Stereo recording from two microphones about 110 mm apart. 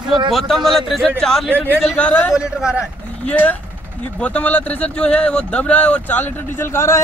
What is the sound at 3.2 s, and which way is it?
Speech, 15° left (ahead or behind).